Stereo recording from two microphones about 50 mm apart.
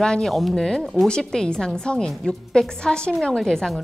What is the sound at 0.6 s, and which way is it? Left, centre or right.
A woman's voice, centre.